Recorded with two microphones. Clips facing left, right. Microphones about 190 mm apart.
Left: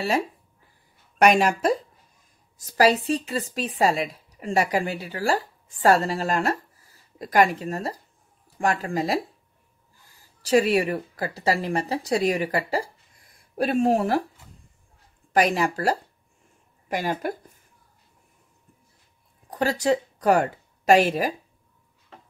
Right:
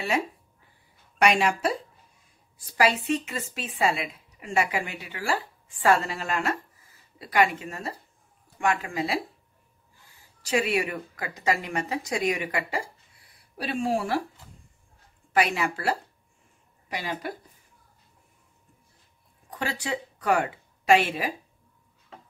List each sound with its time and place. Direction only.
1.2 s speech: 45° left (ahead or behind)
2.5 s a woman's voice: 40° left (ahead or behind)
15.3 s a woman's voice: 40° left (ahead or behind)
19.5 s speech: 40° left (ahead or behind)